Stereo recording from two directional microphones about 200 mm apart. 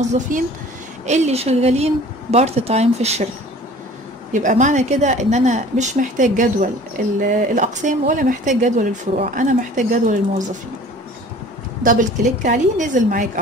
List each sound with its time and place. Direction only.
0.0 s speech: 35° right (ahead or behind)
4.3 s speech: 40° right (ahead or behind)
11.8 s speech: 40° right (ahead or behind)